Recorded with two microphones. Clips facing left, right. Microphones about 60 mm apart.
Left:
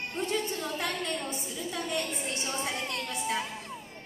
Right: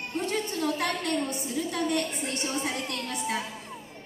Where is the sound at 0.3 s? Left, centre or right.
Right.